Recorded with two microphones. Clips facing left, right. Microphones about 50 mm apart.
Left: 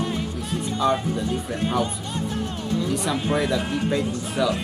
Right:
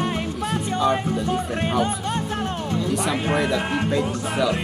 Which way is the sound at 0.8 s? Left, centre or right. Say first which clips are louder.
Even; centre.